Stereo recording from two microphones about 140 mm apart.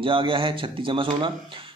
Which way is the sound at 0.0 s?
40° right (ahead or behind).